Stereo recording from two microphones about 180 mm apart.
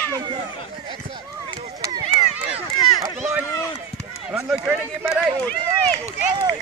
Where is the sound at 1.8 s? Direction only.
25° right (ahead or behind).